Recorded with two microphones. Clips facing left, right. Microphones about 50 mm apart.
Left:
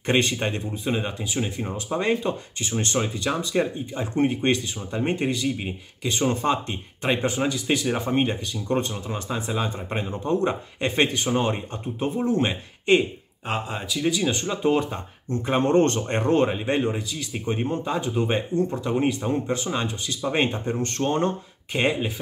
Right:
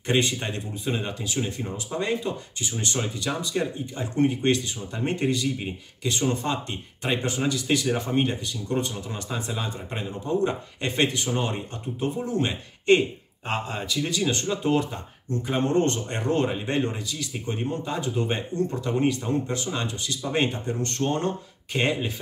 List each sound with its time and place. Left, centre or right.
0.0 s speech: left
13.5 s speech: centre; by 15.0 s left
15.4 s speech: left
16.1 s speech: left
16.4 s speech: centre
21.7 s speech: centre